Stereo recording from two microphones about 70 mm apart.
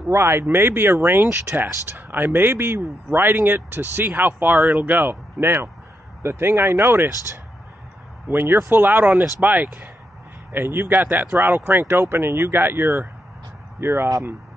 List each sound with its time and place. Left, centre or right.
0.1 s speech: right
1.3 s speech: right
1.7 s speech: right
8.3 s speech: right